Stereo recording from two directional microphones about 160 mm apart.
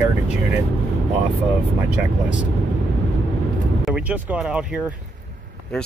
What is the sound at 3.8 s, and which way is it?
Speech, 5° right (ahead or behind).